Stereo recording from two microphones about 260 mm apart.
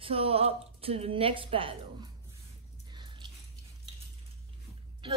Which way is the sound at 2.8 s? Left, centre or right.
Centre.